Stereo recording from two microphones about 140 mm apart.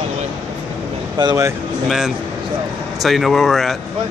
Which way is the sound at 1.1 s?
25° right (ahead or behind).